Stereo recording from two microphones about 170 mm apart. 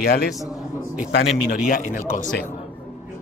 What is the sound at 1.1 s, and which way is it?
Speech, 80° left.